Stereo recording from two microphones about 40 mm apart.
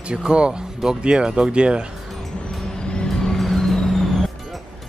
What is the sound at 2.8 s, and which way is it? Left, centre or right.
Vehicle, left.